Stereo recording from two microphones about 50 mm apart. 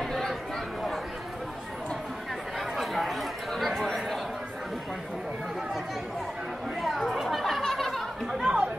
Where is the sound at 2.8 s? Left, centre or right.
Centre.